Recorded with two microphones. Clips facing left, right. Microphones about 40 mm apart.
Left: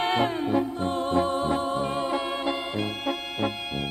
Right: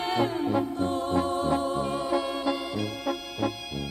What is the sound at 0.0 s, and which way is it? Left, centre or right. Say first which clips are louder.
Music: left 2 dB; left.